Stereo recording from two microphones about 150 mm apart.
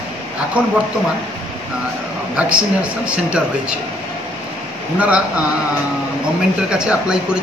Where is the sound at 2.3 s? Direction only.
10° right (ahead or behind).